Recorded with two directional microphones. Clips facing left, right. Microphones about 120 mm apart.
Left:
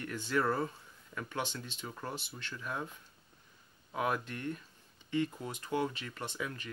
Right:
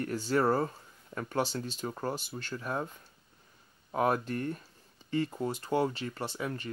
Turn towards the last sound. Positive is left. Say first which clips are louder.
# right 4 dB
turn(degrees=-35)  # may be behind; listen again after turning